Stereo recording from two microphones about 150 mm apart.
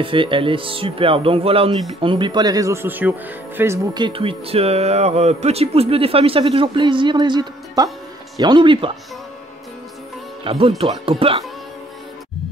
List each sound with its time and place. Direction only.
0.0 s speech: 35° right (ahead or behind); by 4.0 s 20° right (ahead or behind)
4.0 s speech: 35° right (ahead or behind)
10.4 s speech: 40° right (ahead or behind)